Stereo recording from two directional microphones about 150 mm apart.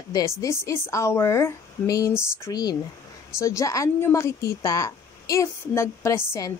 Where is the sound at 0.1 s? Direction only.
20° left (ahead or behind).